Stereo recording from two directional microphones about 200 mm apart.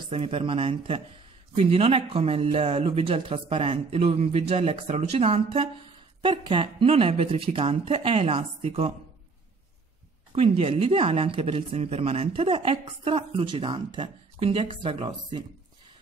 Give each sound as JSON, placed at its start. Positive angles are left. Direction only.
{"t": 0.1, "sound": "speech", "side_deg": -25}
{"t": 10.3, "sound": "speech", "side_deg": -30}